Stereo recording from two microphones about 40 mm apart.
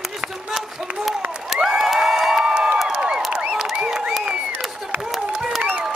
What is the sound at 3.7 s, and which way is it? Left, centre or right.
Applause, right.